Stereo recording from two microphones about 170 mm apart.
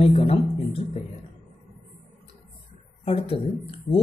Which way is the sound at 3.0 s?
35° left (ahead or behind).